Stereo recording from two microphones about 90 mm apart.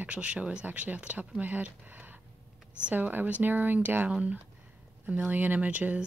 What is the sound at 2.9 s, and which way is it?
Speech, 20° right (ahead or behind).